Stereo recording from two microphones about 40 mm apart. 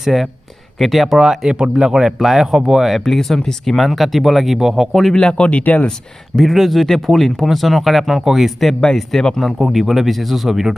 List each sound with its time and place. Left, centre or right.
0.0 s speech: centre
3.1 s speech: centre
5.1 s speech: left
5.5 s speech: left
6.4 s speech: centre
8.8 s speech: centre
9.6 s speech: centre